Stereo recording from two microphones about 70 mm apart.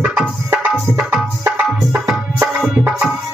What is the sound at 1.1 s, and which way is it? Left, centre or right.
Tabla, right.